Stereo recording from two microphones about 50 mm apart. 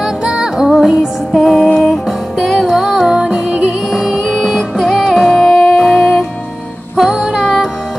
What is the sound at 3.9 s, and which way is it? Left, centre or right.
Music, centre.